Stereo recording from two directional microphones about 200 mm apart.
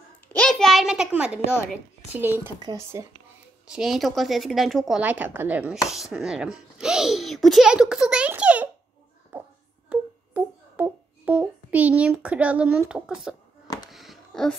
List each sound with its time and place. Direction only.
0.3 s a child's voice: 5° left (ahead or behind); by 3.1 s 15° right (ahead or behind)
3.7 s a child's voice: centre (ahead or behind)
9.8 s a sound: 5° right (ahead or behind)